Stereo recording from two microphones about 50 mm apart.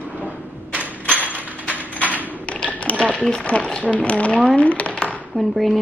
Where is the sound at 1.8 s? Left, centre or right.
Left.